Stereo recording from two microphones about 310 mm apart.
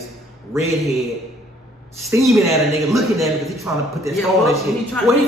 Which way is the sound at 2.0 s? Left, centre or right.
Centre.